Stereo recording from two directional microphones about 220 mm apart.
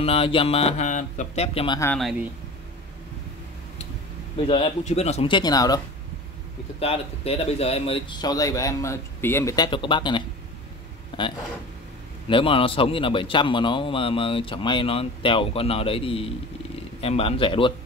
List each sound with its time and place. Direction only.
0.0 s speech: 25° left (ahead or behind)
1.8 s speech: 5° left (ahead or behind)
4.5 s speech: 25° left (ahead or behind)
6.8 s speech: 25° left (ahead or behind)
11.1 s a sound: 20° left (ahead or behind)
12.3 s speech: 25° left (ahead or behind)